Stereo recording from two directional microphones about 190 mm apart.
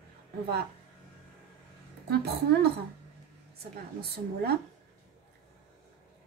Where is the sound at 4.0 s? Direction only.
55° right (ahead or behind).